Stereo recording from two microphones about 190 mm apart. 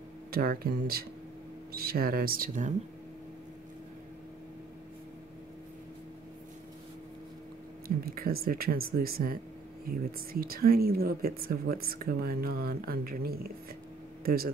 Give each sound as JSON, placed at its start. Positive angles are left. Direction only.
{"t": 0.3, "sound": "speech", "side_deg": -50}
{"t": 8.0, "sound": "speech", "side_deg": -50}